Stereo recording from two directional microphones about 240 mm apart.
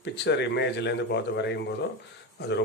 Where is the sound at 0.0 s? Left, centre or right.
Left.